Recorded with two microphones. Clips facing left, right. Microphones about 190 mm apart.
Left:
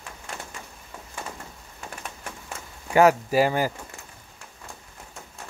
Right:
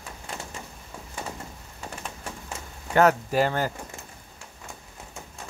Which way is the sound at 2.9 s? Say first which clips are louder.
Left 2 dB; 10° left (ahead or behind).